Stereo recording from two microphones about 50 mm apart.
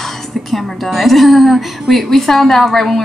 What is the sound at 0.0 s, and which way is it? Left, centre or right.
A woman's voice, centre.